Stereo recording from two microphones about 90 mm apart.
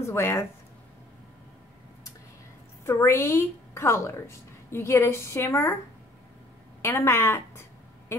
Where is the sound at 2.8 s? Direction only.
30° left (ahead or behind).